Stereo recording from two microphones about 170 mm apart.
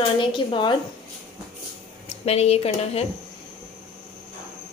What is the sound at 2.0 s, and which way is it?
A woman's voice, 35° left (ahead or behind).